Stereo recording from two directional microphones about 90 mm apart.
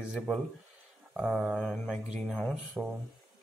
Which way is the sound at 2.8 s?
30° right (ahead or behind).